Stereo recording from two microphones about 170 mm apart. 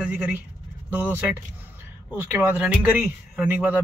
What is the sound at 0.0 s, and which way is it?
Speech, 10° right (ahead or behind).